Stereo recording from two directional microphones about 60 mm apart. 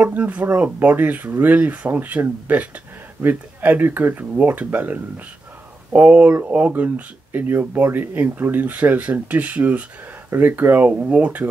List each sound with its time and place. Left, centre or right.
0.0 s speech: right
5.9 s speech: right